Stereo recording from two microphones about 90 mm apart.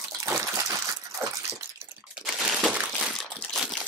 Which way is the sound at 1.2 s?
35° right (ahead or behind).